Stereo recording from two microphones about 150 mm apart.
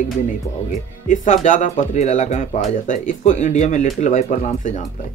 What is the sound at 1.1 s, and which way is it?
Speech, 55° left (ahead or behind).